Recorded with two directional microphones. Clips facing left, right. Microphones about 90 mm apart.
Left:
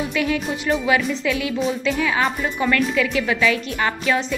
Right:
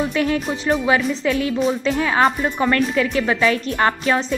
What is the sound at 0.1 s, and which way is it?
Music, 40° right (ahead or behind).